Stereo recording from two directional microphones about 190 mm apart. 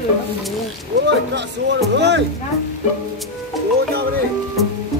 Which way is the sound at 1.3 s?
65° right (ahead or behind).